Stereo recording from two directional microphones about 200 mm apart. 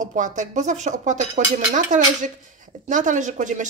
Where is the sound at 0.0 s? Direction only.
40° right (ahead or behind).